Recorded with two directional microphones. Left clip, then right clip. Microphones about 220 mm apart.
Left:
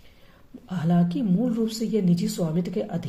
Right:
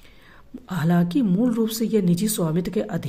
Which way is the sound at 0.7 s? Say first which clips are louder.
Right 3 dB; 30° right (ahead or behind).